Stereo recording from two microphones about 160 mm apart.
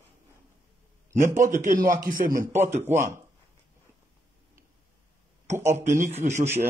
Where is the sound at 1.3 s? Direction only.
55° right (ahead or behind).